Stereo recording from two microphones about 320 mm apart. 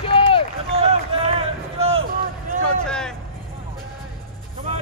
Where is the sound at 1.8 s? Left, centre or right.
Centre.